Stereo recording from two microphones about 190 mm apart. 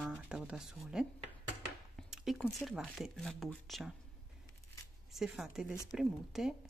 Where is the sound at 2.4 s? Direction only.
Centre (ahead or behind).